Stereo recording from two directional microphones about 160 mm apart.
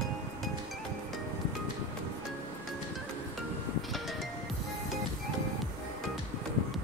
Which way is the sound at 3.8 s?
Centre (ahead or behind).